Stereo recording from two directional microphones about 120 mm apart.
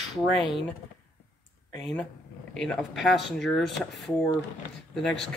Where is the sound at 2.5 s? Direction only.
5° left (ahead or behind).